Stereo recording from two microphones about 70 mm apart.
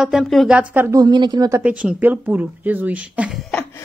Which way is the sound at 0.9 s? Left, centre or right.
Right.